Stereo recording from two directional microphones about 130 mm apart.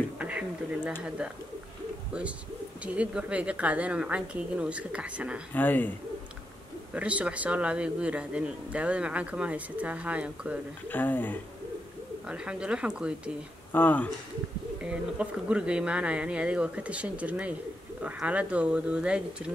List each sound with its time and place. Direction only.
0.2 s bee: 10° right (ahead or behind)
1.0 s a man's voice: 10° right (ahead or behind)
2.8 s a man's voice: 10° right (ahead or behind)
5.5 s speech: 15° left (ahead or behind)
6.9 s a man's voice: 10° right (ahead or behind)
10.9 s speech: 15° left (ahead or behind)
12.3 s a man's voice: 10° right (ahead or behind)
13.7 s speech: 15° left (ahead or behind)
14.8 s a man's voice: 10° right (ahead or behind)